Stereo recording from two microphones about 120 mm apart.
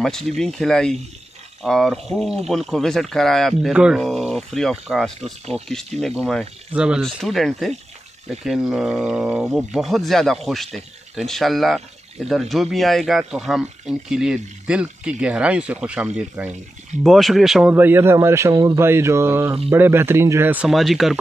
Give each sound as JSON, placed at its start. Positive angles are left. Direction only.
{"t": 0.0, "sound": "speech", "side_deg": 5}
{"t": 3.7, "sound": "speech", "side_deg": -10}
{"t": 7.0, "sound": "speech", "side_deg": 5}
{"t": 17.7, "sound": "a man's voice", "side_deg": -20}
{"t": 18.8, "sound": "a man's voice", "side_deg": -20}
{"t": 20.6, "sound": "speech", "side_deg": 0}